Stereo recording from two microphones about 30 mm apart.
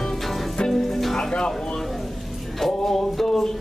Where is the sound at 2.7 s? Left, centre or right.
Centre.